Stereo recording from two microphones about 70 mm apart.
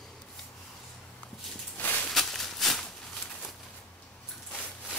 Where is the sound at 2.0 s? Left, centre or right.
Centre.